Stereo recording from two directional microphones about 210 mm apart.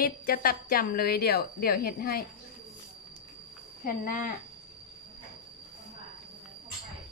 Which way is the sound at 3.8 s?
40° left (ahead or behind).